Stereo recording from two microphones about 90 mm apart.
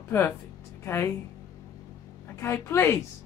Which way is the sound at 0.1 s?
30° left (ahead or behind).